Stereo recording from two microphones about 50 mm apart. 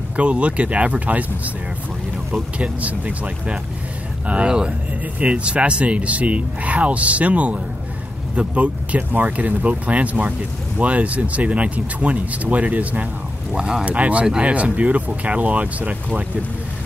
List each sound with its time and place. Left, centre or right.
0.1 s speech: right
2.6 s speech: right
13.5 s speech: centre
13.8 s speech: right